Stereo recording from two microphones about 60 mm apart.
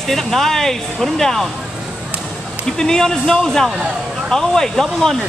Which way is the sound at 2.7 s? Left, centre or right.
Centre.